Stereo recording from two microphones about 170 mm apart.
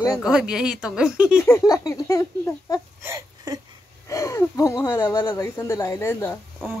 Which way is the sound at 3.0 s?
15° right (ahead or behind).